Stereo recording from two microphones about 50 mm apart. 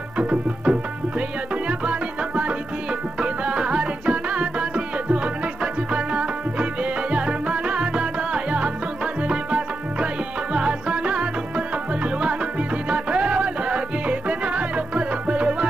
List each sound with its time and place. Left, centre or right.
0.2 s music: right